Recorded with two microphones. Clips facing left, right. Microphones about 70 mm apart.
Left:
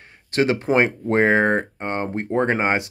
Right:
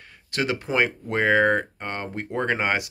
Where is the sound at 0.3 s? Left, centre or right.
Left.